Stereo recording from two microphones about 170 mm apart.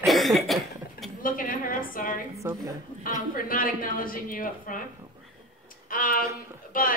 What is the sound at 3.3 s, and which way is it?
A woman's voice, 55° left (ahead or behind).